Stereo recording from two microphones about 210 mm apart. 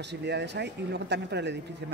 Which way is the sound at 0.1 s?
55° right (ahead or behind).